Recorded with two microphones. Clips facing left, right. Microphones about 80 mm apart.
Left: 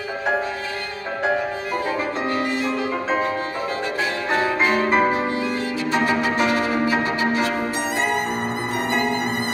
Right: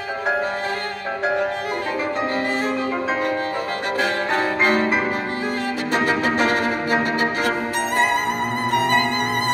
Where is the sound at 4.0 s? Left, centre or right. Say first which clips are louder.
Right 1 dB; right.